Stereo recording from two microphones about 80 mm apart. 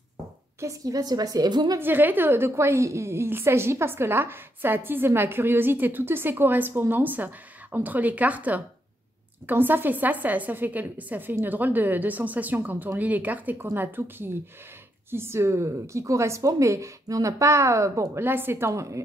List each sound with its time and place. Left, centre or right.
0.6 s a woman's voice: right
1.8 s a woman's voice: right
18.2 s a woman's voice: right